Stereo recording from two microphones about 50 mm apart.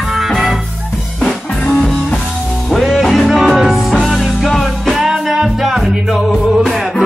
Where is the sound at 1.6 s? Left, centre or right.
Left.